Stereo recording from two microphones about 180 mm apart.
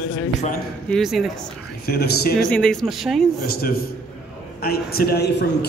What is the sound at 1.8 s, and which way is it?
Speech, 60° left (ahead or behind).